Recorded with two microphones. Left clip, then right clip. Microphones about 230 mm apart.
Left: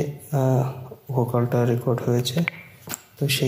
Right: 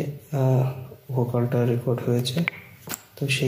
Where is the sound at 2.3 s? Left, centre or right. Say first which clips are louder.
Left 1 dB; centre.